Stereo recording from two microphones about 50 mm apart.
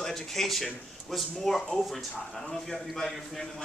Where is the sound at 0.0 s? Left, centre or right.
Centre.